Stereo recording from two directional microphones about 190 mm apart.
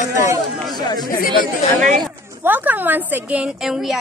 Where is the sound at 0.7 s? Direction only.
20° left (ahead or behind).